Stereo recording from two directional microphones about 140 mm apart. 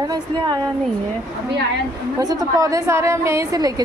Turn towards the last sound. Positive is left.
turn(degrees=-25)  # may be behind; listen again after turning